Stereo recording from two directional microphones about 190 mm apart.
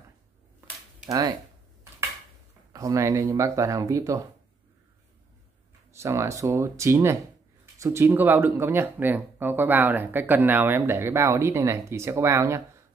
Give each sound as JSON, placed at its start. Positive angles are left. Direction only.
{"t": 1.0, "sound": "speech", "side_deg": -20}
{"t": 2.7, "sound": "speech", "side_deg": -15}
{"t": 5.9, "sound": "speech", "side_deg": -15}